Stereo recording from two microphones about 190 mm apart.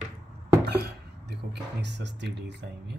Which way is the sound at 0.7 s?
60° right (ahead or behind).